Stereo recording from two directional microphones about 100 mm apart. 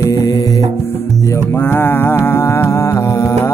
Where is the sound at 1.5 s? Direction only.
20° left (ahead or behind).